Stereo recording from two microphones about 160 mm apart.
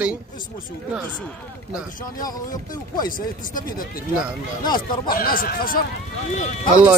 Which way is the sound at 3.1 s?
60° left (ahead or behind).